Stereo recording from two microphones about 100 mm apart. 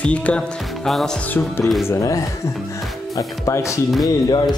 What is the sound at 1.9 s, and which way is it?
Speech, 35° left (ahead or behind).